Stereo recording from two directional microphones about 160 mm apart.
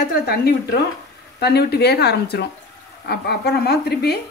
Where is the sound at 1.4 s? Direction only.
90° left.